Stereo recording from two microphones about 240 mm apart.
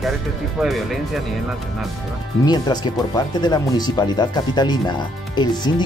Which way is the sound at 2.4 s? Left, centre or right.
Centre.